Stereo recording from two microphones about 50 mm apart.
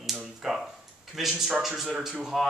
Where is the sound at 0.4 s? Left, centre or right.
Centre.